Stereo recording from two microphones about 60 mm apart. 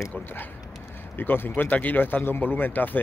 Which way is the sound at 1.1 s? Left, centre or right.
Left.